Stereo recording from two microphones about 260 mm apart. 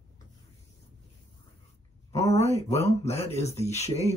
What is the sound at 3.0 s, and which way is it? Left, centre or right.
Speech, left.